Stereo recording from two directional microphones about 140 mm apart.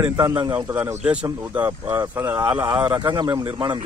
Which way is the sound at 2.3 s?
35° right (ahead or behind).